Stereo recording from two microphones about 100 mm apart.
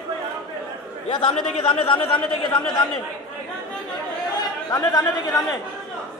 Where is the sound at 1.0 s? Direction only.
55° left (ahead or behind).